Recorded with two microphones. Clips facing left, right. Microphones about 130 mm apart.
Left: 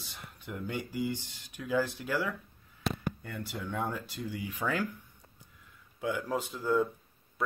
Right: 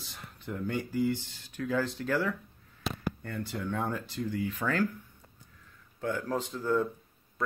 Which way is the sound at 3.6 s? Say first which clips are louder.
Right 1 dB; 5° left (ahead or behind).